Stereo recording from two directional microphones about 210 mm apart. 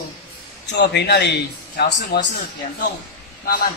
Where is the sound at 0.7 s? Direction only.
55° left (ahead or behind).